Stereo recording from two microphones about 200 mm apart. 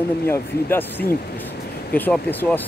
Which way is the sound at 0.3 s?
10° left (ahead or behind).